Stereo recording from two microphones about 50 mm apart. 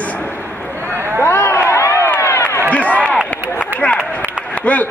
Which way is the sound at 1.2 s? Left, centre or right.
Left.